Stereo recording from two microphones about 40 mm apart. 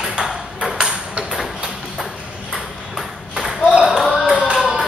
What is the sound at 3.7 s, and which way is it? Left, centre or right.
Ping, right.